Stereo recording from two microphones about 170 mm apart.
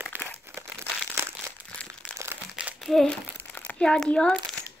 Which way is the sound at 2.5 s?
Centre (ahead or behind).